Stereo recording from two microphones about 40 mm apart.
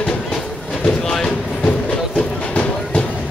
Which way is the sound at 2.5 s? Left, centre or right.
Left.